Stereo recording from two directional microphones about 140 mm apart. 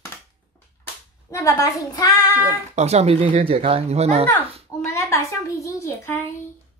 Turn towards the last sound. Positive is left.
turn(degrees=20)  # may be behind; listen again after turning